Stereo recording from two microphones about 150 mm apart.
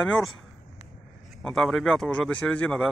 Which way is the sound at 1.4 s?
5° left (ahead or behind).